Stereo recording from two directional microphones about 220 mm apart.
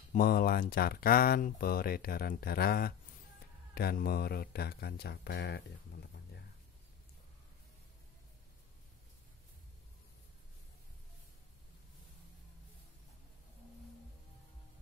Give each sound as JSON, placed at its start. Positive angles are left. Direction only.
{"t": 0.1, "sound": "speech", "side_deg": 40}